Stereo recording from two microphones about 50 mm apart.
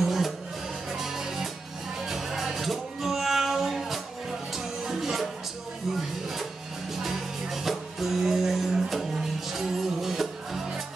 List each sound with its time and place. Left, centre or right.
0.0 s music: centre